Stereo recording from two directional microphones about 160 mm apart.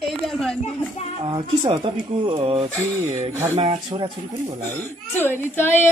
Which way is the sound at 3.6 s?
30° right (ahead or behind).